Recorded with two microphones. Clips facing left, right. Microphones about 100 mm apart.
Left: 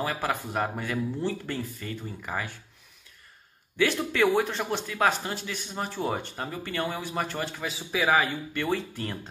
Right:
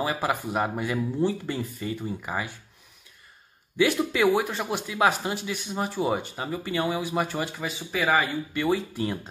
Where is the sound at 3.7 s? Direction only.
10° right (ahead or behind).